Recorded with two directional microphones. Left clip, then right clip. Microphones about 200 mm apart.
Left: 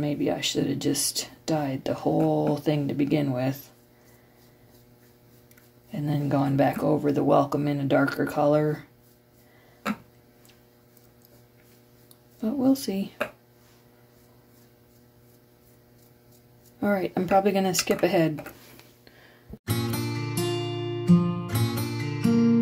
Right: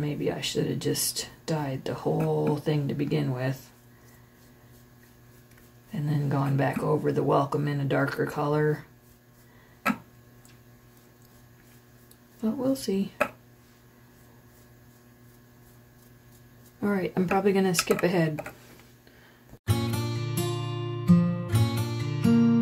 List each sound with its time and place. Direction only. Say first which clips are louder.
0.0 s speech: left 3 dB; 50° left (ahead or behind)
5.9 s speech: left 4 dB; 50° left (ahead or behind)
12.4 s speech: left 3 dB; 50° left (ahead or behind)
16.8 s speech: left 3 dB; 45° left (ahead or behind)
19.6 s music: left 1 dB; 25° left (ahead or behind)